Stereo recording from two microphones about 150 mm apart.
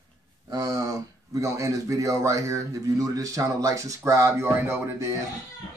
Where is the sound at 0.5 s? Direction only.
25° right (ahead or behind).